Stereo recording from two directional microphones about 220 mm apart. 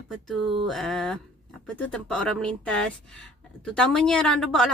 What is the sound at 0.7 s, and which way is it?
A woman's voice, centre (ahead or behind).